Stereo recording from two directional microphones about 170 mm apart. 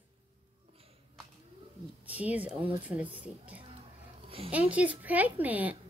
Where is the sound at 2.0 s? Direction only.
10° right (ahead or behind).